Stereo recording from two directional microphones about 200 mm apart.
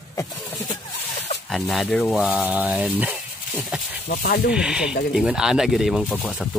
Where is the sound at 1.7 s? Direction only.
Centre (ahead or behind).